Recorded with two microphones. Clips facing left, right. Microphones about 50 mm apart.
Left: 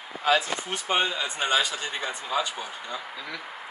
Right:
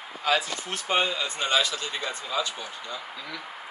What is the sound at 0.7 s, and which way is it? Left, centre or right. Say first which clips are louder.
Speech: even; centre.